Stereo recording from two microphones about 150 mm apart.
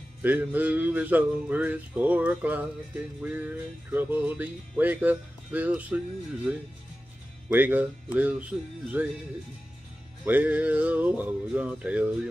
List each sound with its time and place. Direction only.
0.2 s music: 10° right (ahead or behind)
10.2 s music: 10° right (ahead or behind)